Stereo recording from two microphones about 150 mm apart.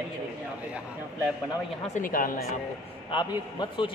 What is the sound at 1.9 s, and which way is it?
Speech, 70° left (ahead or behind).